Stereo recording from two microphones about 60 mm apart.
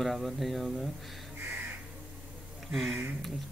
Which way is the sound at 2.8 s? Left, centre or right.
Right.